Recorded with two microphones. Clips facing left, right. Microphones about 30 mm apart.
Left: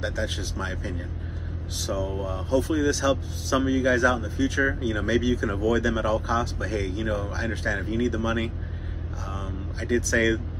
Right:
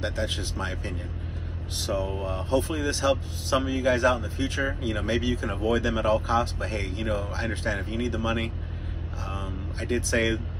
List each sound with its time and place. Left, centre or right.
0.4 s speech: right
1.8 s speech: right
9.2 s vehicle: right